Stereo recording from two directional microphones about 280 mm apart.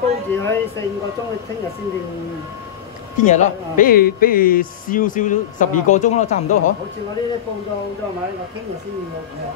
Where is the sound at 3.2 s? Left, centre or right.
Left.